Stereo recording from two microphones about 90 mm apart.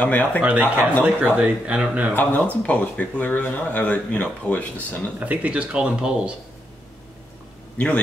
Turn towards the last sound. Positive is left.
turn(degrees=15)  # may be behind; listen again after turning